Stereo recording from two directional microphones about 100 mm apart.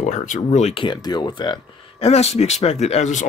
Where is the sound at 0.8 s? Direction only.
45° left (ahead or behind).